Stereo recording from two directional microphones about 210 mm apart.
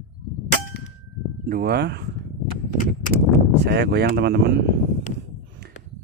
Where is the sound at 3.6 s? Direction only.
55° right (ahead or behind).